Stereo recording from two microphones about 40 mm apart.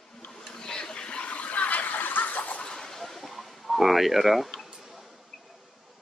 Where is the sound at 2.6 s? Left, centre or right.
Centre.